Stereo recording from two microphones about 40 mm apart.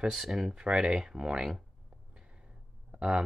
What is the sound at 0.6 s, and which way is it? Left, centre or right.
Speech, right.